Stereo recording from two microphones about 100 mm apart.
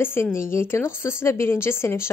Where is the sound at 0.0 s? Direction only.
25° left (ahead or behind).